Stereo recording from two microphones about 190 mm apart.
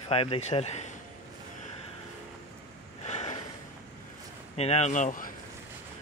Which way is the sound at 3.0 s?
35° left (ahead or behind).